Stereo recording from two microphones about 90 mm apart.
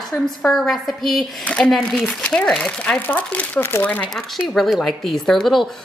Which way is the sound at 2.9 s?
20° left (ahead or behind).